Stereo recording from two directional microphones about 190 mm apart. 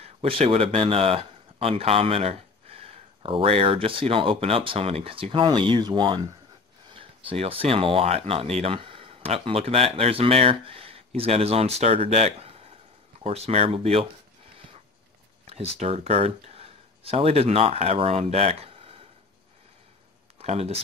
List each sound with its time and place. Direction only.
0.0 s speech: 30° right (ahead or behind)
15.5 s a sound: 30° right (ahead or behind)
15.8 s speech: 35° right (ahead or behind)
20.3 s speech: 30° right (ahead or behind)